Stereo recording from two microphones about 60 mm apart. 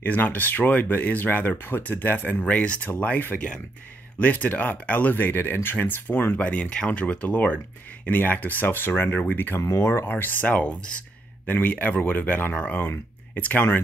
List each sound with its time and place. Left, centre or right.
0.0 s speech: left
9.6 s speech: left
9.8 s speech: left
10.4 s speech: left